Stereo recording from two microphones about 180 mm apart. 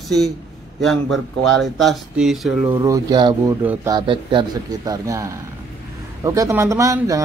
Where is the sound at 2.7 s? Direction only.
20° right (ahead or behind).